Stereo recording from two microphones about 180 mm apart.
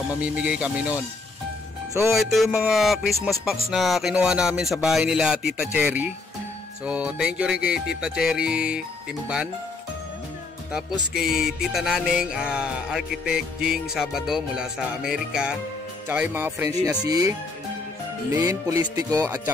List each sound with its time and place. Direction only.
0.2 s speech: 5° right (ahead or behind)
2.0 s music: centre (ahead or behind)
11.1 s music: 5° right (ahead or behind)
16.1 s speech: 10° right (ahead or behind)
17.0 s music: 20° right (ahead or behind)
18.3 s music: 15° right (ahead or behind)